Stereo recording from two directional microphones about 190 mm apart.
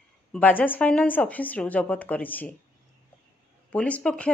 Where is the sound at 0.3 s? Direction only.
10° left (ahead or behind).